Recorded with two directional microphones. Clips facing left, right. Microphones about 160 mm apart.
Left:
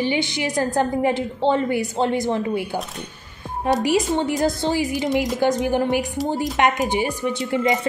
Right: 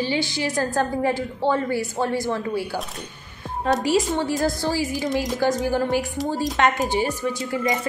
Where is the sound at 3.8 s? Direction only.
20° left (ahead or behind).